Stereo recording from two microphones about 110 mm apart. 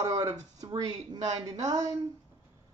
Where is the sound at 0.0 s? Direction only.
35° right (ahead or behind).